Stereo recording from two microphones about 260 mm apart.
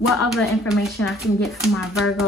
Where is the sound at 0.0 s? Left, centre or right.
Centre.